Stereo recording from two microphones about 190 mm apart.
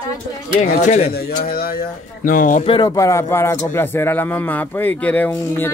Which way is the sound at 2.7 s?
20° left (ahead or behind).